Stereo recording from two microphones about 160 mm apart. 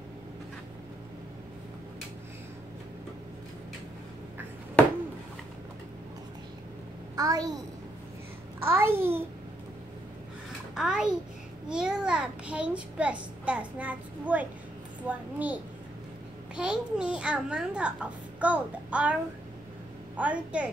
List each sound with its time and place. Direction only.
7.2 s a child's voice: 25° right (ahead or behind)
8.6 s a child's voice: 15° right (ahead or behind)
10.7 s a sound: 5° right (ahead or behind)
11.7 s a child's voice: 5° right (ahead or behind)
20.2 s a child's voice: 10° right (ahead or behind)